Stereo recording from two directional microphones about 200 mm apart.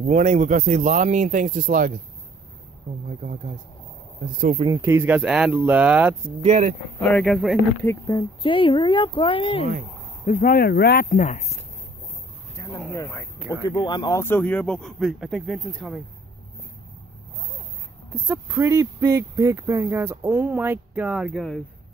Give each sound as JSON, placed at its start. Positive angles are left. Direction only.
{"t": 0.0, "sound": "speech", "side_deg": -35}
{"t": 3.2, "sound": "speech", "side_deg": -35}
{"t": 4.6, "sound": "speech", "side_deg": -15}
{"t": 6.4, "sound": "speech", "side_deg": -35}
{"t": 7.0, "sound": "speech", "side_deg": 5}
{"t": 7.8, "sound": "speech", "side_deg": 15}
{"t": 10.2, "sound": "speech", "side_deg": 40}
{"t": 12.7, "sound": "speech", "side_deg": 10}
{"t": 18.1, "sound": "speech", "side_deg": -10}